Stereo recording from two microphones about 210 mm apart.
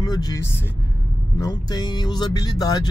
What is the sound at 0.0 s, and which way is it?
Speech, 20° left (ahead or behind).